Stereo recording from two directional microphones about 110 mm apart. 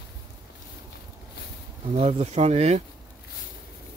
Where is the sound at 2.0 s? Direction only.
70° right (ahead or behind); by 2.8 s 85° right.